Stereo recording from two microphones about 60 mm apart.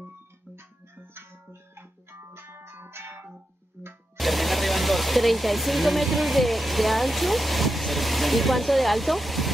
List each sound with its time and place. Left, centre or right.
0.6 s music: right
4.2 s speech: centre